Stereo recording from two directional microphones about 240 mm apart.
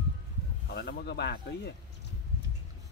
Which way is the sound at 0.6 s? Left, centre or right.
Left.